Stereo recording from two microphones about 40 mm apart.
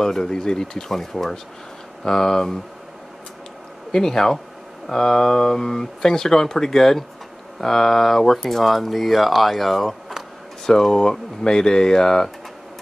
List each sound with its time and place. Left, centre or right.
0.0 s speech: centre
3.9 s speech: centre